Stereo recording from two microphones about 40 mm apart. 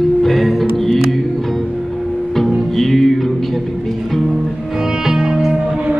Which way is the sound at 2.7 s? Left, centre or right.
Centre.